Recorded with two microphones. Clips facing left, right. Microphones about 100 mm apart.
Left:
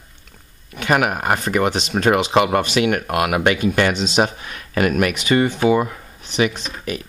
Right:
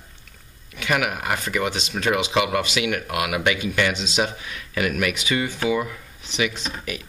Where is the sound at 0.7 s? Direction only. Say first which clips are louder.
Left 5 dB; 40° left (ahead or behind).